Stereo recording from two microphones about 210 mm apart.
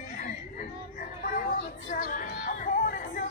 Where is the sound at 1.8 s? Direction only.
40° left (ahead or behind).